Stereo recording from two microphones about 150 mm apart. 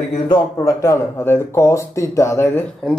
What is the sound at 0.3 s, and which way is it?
Speech, 20° left (ahead or behind).